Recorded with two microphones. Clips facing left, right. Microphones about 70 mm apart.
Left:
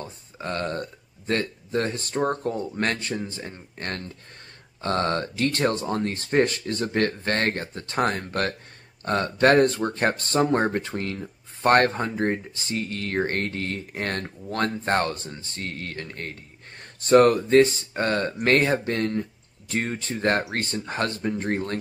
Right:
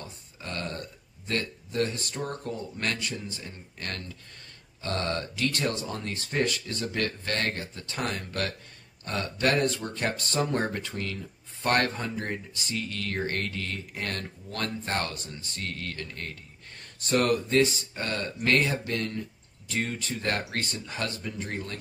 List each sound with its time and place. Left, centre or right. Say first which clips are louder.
0.0 s speech: left 7 dB; left